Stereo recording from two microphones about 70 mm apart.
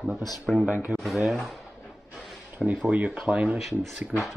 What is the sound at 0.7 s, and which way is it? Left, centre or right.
Speech, right.